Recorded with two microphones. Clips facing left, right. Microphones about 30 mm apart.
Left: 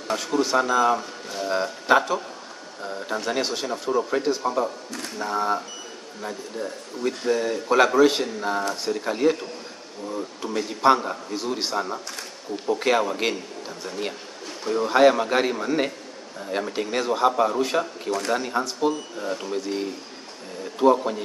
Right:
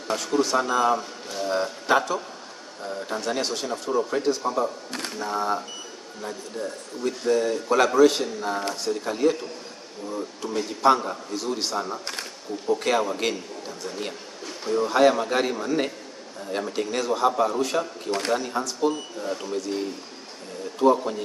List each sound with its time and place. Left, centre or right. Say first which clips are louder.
0.1 s speech: left 1 dB; centre
10.4 s speech: left 1 dB; centre
20.8 s speech: left 1 dB; centre